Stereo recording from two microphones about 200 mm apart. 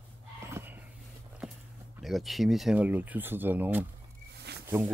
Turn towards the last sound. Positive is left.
turn(degrees=-10)  # may be behind; listen again after turning